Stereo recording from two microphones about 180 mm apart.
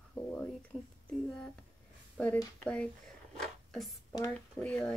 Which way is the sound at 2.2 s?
5° left (ahead or behind).